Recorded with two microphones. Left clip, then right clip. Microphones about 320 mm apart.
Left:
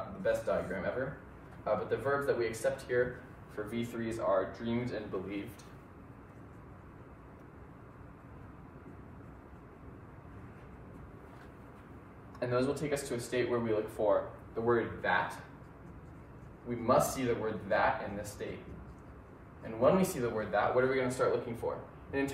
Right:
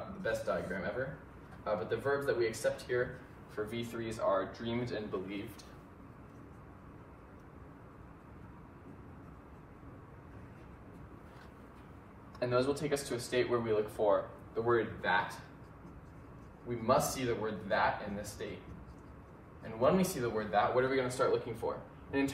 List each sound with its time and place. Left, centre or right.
0.2 s a man's voice: centre
1.6 s speech: centre
12.4 s speech: centre
16.6 s speech: centre
19.9 s speech: centre